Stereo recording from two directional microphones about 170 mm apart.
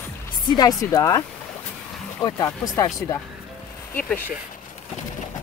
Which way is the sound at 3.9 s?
10° left (ahead or behind).